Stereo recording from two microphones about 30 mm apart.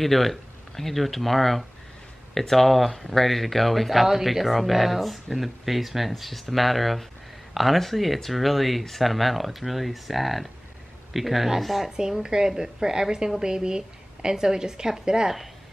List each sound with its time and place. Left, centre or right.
0.0 s speech: centre
12.2 s a woman's voice: right